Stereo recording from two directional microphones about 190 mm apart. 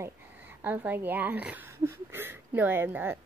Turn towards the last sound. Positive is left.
turn(degrees=-10)  # may be behind; listen again after turning